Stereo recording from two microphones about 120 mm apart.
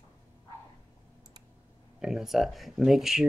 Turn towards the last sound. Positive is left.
turn(degrees=-5)  # may be behind; listen again after turning